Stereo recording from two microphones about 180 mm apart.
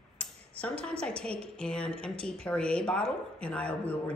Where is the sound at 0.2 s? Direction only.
5° left (ahead or behind).